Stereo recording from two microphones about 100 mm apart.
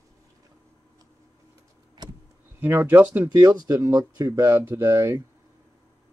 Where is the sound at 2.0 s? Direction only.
45° right (ahead or behind).